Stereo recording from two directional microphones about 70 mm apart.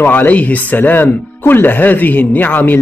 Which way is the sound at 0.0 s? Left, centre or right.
Left.